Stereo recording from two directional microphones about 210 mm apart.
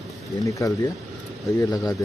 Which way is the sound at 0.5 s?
15° left (ahead or behind).